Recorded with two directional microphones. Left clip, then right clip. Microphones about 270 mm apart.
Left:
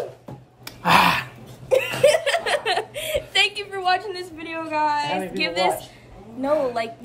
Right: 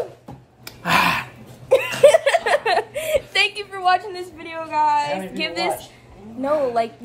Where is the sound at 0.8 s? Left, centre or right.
Centre.